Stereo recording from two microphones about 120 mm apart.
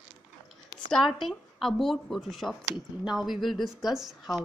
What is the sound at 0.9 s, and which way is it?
A woman's voice, centre (ahead or behind).